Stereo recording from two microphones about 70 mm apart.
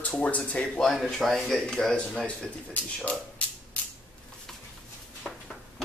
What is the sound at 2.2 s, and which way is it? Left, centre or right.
Speech, left.